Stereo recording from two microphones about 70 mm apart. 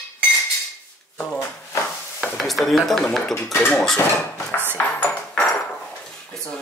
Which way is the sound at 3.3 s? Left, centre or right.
Left.